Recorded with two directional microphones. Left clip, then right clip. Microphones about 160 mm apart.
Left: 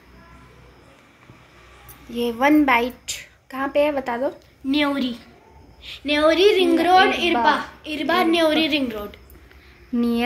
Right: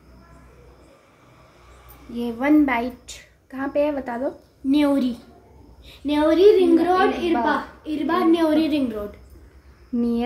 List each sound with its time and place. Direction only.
2.4 s a woman's voice: 10° left (ahead or behind)
4.6 s a woman's voice: 60° right (ahead or behind)
6.0 s a woman's voice: 35° right (ahead or behind)
9.9 s speech: centre (ahead or behind)